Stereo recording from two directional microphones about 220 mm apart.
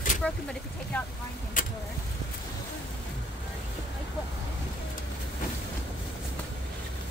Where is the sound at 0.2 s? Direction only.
5° left (ahead or behind).